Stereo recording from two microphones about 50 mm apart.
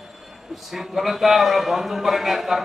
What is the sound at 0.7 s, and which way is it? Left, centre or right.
Speech, centre.